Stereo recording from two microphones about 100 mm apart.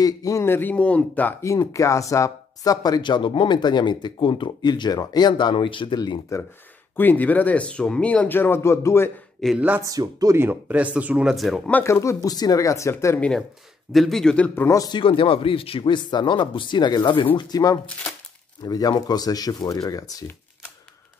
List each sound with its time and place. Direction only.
0.0 s speech: 35° left (ahead or behind); by 1.3 s 15° left (ahead or behind)
1.4 s speech: 30° left (ahead or behind); by 6.2 s 55° left (ahead or behind)
7.0 s speech: 15° left (ahead or behind)
9.4 s speech: centre (ahead or behind)
9.8 s speech: 35° right (ahead or behind)
10.3 s speech: 20° right (ahead or behind)
11.3 s speech: centre (ahead or behind)
11.8 s speech: 30° left (ahead or behind)
13.9 s speech: 5° left (ahead or behind)
14.5 s speech: 25° left (ahead or behind)
14.8 s speech: 50° left (ahead or behind)